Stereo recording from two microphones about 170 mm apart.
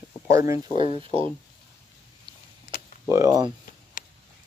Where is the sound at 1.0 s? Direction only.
35° right (ahead or behind).